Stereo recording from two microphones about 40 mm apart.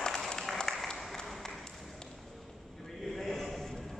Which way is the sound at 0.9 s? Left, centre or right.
Centre.